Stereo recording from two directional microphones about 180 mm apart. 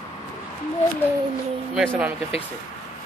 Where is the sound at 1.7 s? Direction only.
Centre (ahead or behind).